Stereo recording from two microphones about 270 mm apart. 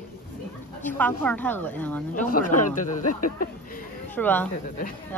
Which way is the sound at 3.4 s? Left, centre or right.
Left.